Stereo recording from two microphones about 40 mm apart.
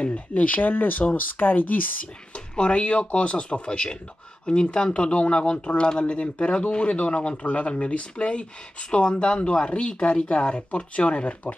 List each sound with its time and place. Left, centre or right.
0.0 s speech: left
2.3 s speech: left